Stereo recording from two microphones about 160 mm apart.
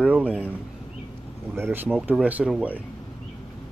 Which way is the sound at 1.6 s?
10° right (ahead or behind).